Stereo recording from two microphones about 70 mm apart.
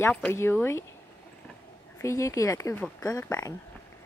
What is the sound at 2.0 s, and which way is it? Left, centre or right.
Speech, left.